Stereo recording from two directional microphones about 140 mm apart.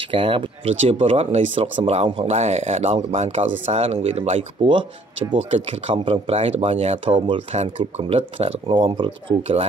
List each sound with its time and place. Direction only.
0.1 s speech: 40° right (ahead or behind)
5.4 s speech: 50° right (ahead or behind)